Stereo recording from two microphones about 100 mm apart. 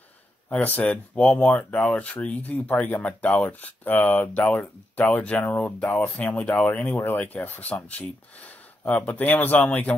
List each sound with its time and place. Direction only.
0.5 s speech: 15° left (ahead or behind)